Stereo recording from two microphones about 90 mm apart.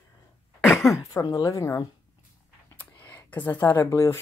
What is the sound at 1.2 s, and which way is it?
Speech, 45° left (ahead or behind).